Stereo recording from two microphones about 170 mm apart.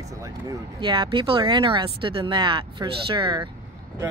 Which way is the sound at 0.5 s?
30° right (ahead or behind).